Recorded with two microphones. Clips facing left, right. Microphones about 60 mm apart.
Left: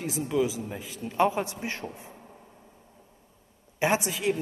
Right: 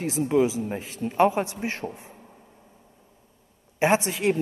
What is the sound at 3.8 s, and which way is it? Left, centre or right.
Speech, right.